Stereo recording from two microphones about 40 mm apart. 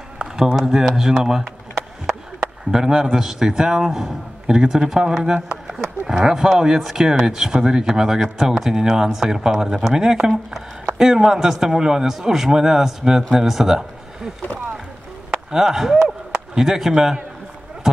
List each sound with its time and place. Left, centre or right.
0.2 s speech: centre
15.3 s speech: centre